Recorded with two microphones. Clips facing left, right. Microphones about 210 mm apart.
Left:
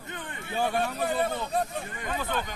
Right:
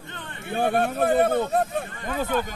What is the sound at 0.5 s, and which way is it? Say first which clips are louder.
Speech: right 5 dB; 55° right (ahead or behind).